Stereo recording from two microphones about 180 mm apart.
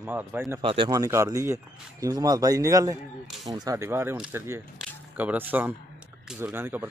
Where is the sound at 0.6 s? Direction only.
30° right (ahead or behind).